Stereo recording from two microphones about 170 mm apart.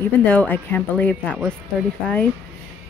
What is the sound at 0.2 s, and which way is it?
Speech, 5° left (ahead or behind).